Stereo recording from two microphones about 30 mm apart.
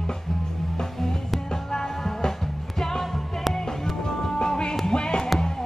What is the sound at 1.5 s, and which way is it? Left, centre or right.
Music, centre.